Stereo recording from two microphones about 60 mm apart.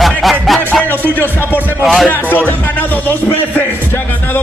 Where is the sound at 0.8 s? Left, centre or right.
Left.